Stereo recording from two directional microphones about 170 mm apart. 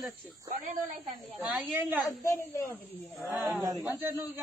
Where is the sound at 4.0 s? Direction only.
15° right (ahead or behind).